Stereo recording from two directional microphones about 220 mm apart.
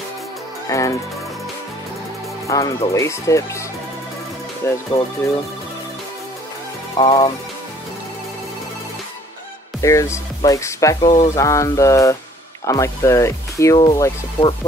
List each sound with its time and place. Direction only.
0.7 s speech: 15° left (ahead or behind)
2.4 s speech: 15° left (ahead or behind)
4.6 s speech: 10° left (ahead or behind)
7.0 s speech: 20° left (ahead or behind)
9.8 s speech: 15° left (ahead or behind)